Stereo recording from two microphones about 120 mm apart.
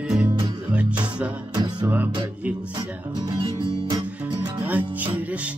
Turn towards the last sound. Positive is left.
turn(degrees=-15)  # may be behind; listen again after turning